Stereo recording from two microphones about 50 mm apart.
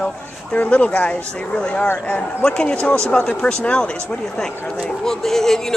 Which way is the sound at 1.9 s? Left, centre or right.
Left.